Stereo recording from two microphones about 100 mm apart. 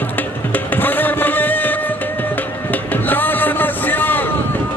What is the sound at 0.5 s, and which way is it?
Music, 20° left (ahead or behind).